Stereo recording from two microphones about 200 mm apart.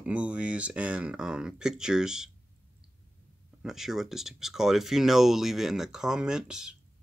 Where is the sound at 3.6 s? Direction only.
Centre (ahead or behind).